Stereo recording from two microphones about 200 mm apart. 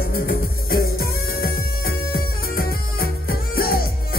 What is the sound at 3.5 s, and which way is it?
Music, 50° left (ahead or behind).